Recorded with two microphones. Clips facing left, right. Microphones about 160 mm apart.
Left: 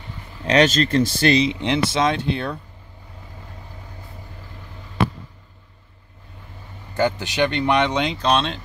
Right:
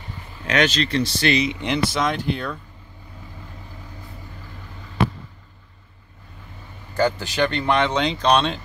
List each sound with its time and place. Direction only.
0.5 s speech: 40° left (ahead or behind); by 2.6 s 25° left (ahead or behind)
6.9 s speech: 20° left (ahead or behind)
8.2 s speech: centre (ahead or behind)